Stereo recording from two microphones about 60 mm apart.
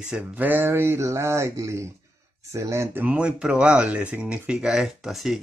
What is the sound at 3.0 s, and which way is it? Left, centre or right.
Speech, centre.